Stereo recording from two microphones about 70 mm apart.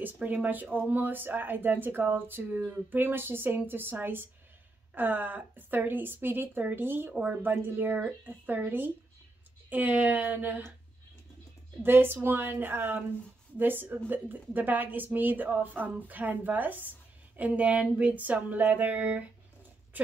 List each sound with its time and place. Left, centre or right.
0.0 s speech: right
11.8 s a woman's voice: right